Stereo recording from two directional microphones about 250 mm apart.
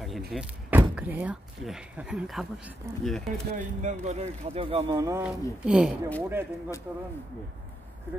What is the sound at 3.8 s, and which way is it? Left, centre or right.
Speech, right.